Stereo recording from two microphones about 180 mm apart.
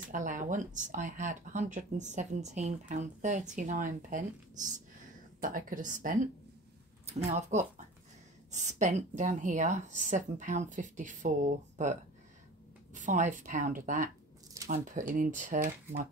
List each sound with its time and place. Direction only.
0.1 s speech: 45° right (ahead or behind)
7.2 s speech: 40° right (ahead or behind)